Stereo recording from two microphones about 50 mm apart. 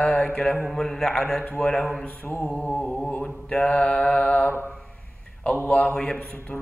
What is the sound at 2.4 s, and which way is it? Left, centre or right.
Mantra, left.